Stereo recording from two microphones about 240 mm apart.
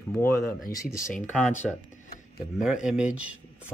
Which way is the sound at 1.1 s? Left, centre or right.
Left.